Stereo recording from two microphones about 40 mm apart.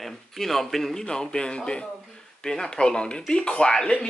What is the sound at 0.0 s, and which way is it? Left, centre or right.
A man's voice, centre.